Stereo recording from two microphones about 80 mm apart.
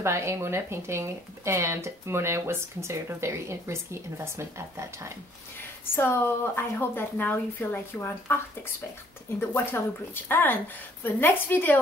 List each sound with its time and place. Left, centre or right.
0.0 s speech: right
5.9 s a woman's voice: left
9.4 s a woman's voice: left